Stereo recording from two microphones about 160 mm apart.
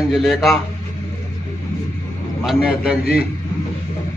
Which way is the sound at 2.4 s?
5° right (ahead or behind).